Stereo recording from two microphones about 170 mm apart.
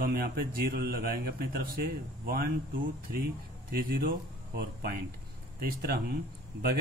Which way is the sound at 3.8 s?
55° right (ahead or behind).